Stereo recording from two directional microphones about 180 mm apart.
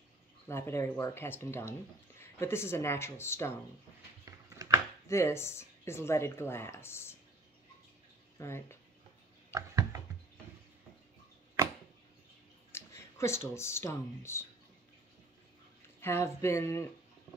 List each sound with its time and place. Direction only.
0.5 s speech: 15° left (ahead or behind)
4.6 s chopping: 20° right (ahead or behind)
5.0 s speech: 15° left (ahead or behind)
8.4 s speech: 15° left (ahead or behind)
9.5 s a sound: 15° right (ahead or behind)
12.7 s speech: 15° left (ahead or behind)
16.0 s speech: 15° left (ahead or behind)